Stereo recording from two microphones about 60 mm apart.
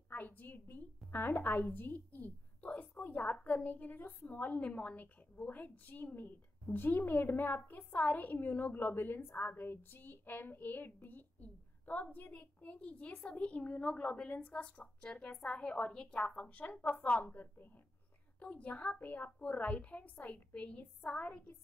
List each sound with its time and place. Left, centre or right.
0.1 s a woman's voice: left
4.6 s a woman's voice: left
18.4 s a woman's voice: left